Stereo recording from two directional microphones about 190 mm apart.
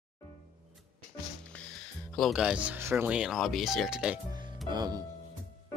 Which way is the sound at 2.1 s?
Centre (ahead or behind).